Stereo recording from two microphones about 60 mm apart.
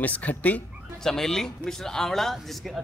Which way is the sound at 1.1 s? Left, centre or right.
Centre.